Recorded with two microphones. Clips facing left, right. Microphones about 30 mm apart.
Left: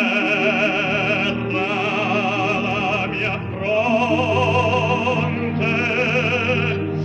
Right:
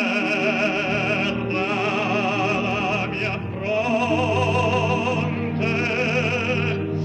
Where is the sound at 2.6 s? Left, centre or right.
Left.